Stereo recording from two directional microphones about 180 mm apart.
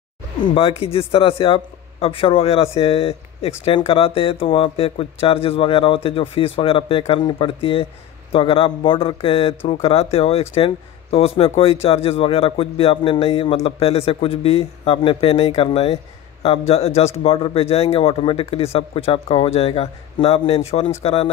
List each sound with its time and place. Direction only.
0.6 s speech: 30° left (ahead or behind)